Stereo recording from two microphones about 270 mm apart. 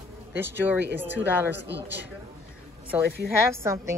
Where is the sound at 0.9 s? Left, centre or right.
Centre.